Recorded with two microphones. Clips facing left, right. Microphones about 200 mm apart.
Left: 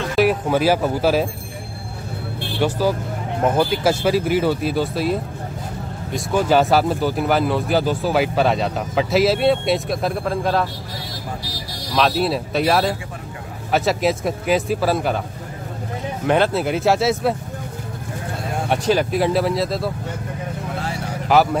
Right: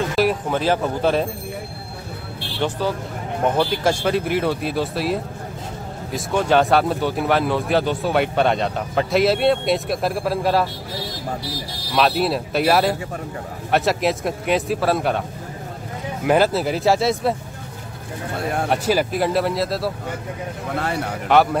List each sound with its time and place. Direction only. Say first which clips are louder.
0.1 s speech: left 2 dB; centre (ahead or behind)
2.6 s speech: left 3 dB; 10° left (ahead or behind)
3.8 s speech: left 2 dB; 5° left (ahead or behind)
11.9 s speech: even; centre (ahead or behind)
16.3 s speech: right 1 dB; 5° right (ahead or behind)
18.7 s speech: left 3 dB; 5° right (ahead or behind)
20.8 s speech: right 3 dB; 60° right (ahead or behind)
21.3 s speech: even; centre (ahead or behind)